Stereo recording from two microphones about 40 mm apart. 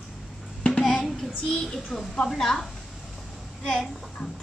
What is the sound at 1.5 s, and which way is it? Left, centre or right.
A woman's voice, centre.